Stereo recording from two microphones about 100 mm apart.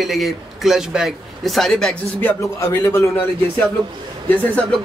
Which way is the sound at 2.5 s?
25° left (ahead or behind).